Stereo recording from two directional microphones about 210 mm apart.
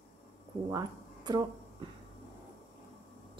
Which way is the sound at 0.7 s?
20° right (ahead or behind).